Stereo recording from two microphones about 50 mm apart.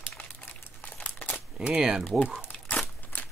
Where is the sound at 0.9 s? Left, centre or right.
Left.